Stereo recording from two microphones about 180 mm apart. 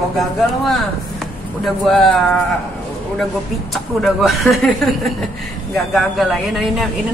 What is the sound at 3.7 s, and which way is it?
Speech, centre (ahead or behind).